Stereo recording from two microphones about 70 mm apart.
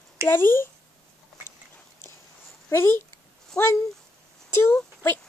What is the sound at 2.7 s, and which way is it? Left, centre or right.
A woman's voice, left.